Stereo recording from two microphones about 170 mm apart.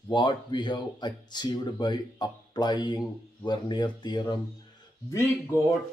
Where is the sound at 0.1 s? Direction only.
25° left (ahead or behind).